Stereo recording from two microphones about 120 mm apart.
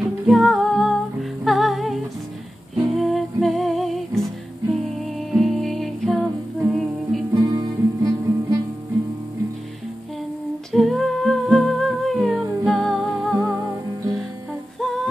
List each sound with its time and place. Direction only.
0.3 s music: centre (ahead or behind)
7.4 s music: 35° right (ahead or behind)
10.7 s music: centre (ahead or behind)
14.8 s music: centre (ahead or behind)